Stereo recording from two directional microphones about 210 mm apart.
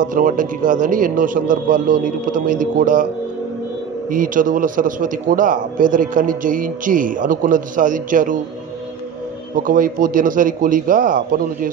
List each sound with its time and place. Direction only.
0.0 s a man's voice: 40° right (ahead or behind)
4.1 s a man's voice: 40° right (ahead or behind)
9.6 s a man's voice: 40° right (ahead or behind)